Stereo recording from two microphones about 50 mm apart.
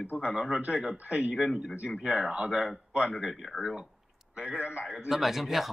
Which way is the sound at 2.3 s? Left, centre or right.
Right.